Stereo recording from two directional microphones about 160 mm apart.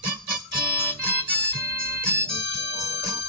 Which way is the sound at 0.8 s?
10° left (ahead or behind).